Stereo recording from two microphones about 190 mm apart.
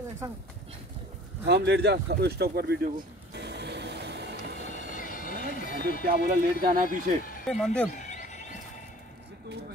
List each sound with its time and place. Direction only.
1.5 s speech: 60° right (ahead or behind)
3.3 s vehicle: 65° right (ahead or behind)
4.9 s a sound: 45° left (ahead or behind)
5.6 s speech: 45° left (ahead or behind)
6.0 s speech: 50° right (ahead or behind)
7.4 s speech: 5° left (ahead or behind)
7.9 s bird: 40° left (ahead or behind)